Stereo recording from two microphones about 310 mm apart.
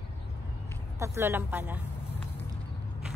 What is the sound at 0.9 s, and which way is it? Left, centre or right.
Speech, centre.